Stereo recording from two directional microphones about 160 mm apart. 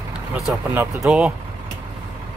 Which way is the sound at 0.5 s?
5° right (ahead or behind).